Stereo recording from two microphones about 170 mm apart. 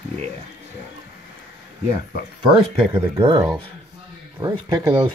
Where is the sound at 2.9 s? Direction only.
25° right (ahead or behind).